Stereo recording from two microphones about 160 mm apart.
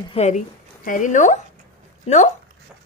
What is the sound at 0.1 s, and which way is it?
Speech, 45° left (ahead or behind).